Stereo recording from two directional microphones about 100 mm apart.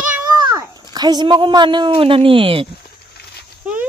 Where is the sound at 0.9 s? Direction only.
45° right (ahead or behind); by 2.7 s 65° right (ahead or behind).